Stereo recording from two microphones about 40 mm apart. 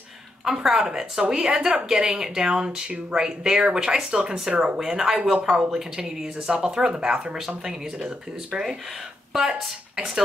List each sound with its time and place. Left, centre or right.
0.5 s speech: centre
4.7 s speech: centre
9.3 s speech: centre
9.9 s speech: centre